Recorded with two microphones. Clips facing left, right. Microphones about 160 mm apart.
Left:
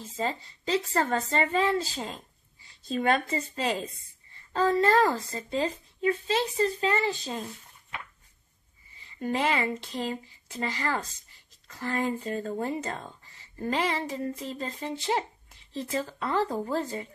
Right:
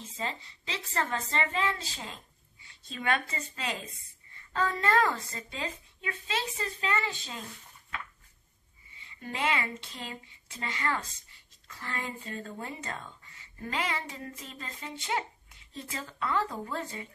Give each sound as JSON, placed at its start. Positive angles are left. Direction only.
{"t": 0.2, "sound": "a woman's voice", "side_deg": 40}
{"t": 8.9, "sound": "a woman's voice", "side_deg": 40}